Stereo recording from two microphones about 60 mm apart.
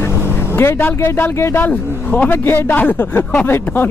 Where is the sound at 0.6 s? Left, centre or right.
Left.